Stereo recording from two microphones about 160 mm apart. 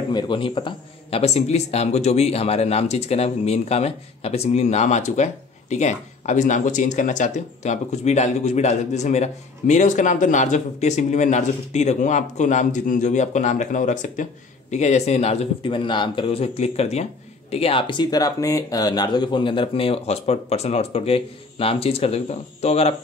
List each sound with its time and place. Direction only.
0.1 s a man's voice: 30° left (ahead or behind)